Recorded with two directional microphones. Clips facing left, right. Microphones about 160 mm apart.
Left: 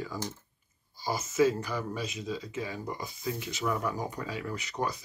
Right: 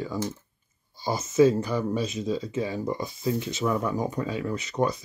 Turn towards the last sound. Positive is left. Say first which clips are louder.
# right 7 dB
turn(degrees=-20)  # may be behind; listen again after turning